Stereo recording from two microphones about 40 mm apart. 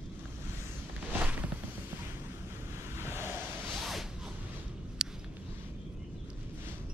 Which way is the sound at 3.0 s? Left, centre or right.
Right.